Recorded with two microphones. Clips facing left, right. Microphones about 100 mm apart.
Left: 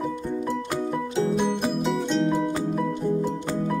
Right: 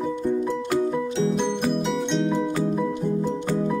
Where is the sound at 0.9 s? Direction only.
Centre (ahead or behind).